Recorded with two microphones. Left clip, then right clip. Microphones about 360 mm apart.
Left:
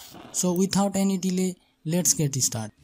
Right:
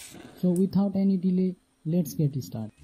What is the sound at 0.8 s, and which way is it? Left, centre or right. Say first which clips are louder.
Speech: left 3 dB; left.